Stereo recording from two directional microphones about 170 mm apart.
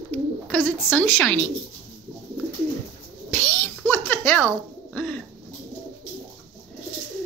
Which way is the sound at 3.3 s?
15° left (ahead or behind).